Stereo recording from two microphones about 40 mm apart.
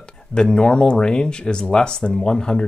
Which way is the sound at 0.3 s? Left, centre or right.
Left.